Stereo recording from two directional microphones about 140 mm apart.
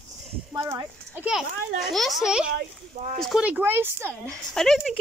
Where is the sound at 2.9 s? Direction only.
80° right.